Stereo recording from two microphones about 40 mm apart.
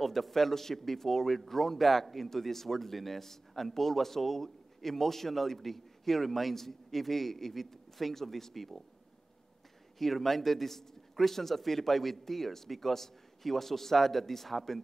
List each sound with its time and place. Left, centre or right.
0.0 s a man's voice: centre
9.9 s a man's voice: centre